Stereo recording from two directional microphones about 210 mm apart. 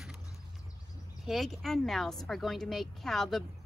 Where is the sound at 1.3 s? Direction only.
Centre (ahead or behind).